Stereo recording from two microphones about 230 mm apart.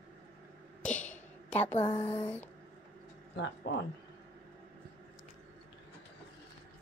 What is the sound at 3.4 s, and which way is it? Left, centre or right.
Speech, left.